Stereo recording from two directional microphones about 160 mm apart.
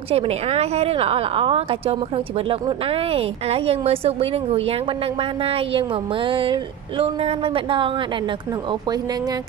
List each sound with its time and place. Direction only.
0.1 s a woman's voice: 40° right (ahead or behind)